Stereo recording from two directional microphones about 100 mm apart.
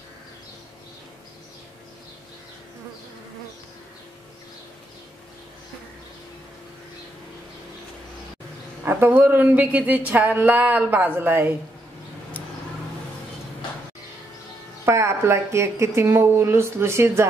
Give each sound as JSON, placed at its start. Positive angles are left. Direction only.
{"t": 8.8, "sound": "speech", "side_deg": -20}
{"t": 14.9, "sound": "a woman's voice", "side_deg": -30}